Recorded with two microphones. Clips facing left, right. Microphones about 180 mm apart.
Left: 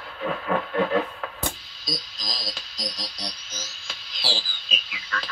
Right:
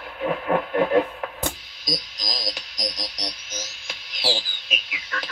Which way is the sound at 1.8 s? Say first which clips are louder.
Right 3 dB; 20° right (ahead or behind).